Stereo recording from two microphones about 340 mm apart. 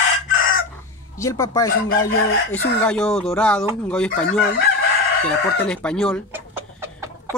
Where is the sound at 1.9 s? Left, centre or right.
Left.